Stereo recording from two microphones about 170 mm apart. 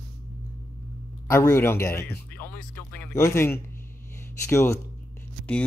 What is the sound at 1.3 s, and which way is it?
Speech, 15° left (ahead or behind).